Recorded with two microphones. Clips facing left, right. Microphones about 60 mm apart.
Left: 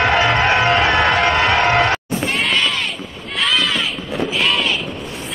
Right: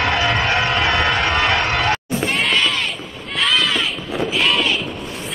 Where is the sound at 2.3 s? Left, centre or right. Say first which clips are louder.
Even; centre.